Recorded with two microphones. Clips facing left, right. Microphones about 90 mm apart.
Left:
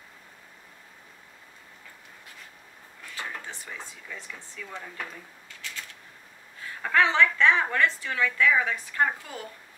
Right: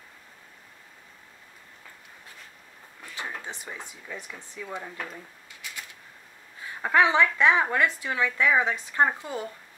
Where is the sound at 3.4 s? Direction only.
20° right (ahead or behind).